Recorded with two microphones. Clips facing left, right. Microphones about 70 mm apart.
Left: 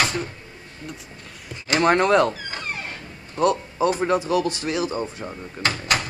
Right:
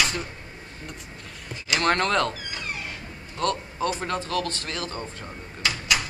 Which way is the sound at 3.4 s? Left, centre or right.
Centre.